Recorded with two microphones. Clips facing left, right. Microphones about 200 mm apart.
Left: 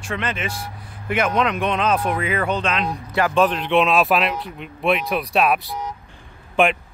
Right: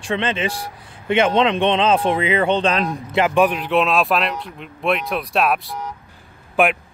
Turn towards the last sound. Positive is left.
turn(degrees=-5)  # may be behind; listen again after turning